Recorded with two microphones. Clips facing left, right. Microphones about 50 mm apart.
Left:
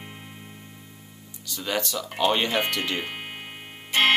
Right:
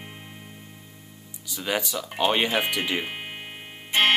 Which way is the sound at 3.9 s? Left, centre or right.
Right.